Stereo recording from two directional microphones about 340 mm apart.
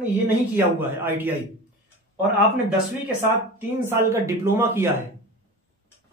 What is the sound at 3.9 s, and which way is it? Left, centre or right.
Speech, centre.